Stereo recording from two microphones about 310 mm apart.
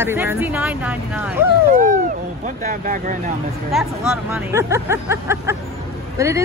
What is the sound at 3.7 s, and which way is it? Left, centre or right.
Speech, centre.